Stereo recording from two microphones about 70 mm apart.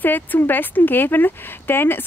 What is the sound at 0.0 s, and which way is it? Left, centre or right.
Speech, left.